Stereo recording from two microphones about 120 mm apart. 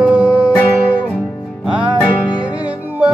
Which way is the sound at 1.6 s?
5° right (ahead or behind).